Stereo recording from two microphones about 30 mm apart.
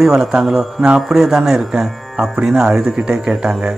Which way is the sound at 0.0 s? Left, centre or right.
Centre.